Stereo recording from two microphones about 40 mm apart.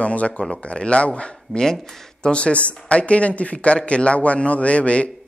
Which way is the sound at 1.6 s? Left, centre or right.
Centre.